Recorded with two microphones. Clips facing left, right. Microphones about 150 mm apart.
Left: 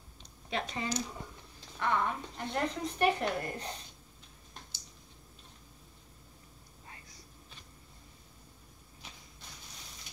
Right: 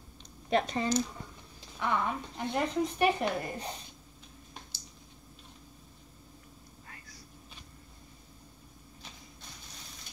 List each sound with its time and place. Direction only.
0.5 s speech: 40° right (ahead or behind)
1.8 s speech: 5° right (ahead or behind)